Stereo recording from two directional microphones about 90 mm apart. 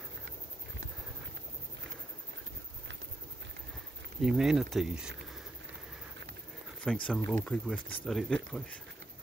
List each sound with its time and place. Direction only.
4.2 s speech: 5° right (ahead or behind)
6.8 s speech: 10° left (ahead or behind)